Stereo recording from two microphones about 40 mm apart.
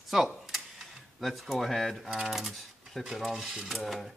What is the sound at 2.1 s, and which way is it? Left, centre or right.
Speech, centre.